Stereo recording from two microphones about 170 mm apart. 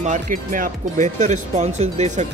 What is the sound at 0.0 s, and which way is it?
Speech, 50° right (ahead or behind).